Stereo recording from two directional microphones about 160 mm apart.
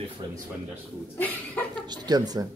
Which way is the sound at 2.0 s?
25° right (ahead or behind).